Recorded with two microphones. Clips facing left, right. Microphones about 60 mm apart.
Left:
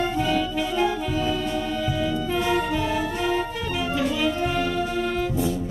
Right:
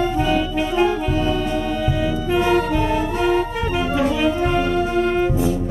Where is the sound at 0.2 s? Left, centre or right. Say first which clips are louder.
Right 4 dB; right.